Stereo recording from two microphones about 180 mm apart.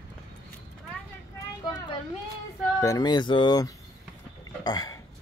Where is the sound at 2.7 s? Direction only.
20° left (ahead or behind).